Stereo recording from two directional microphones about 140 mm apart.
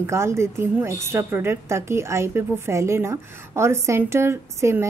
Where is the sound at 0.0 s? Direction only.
20° right (ahead or behind).